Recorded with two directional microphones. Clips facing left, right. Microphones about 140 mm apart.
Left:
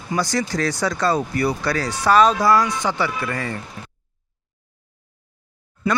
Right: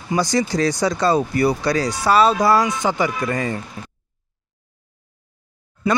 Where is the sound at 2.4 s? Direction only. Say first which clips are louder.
Right 1 dB; 25° right (ahead or behind).